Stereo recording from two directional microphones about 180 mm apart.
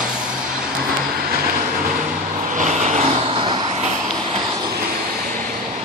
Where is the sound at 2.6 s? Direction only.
40° right (ahead or behind).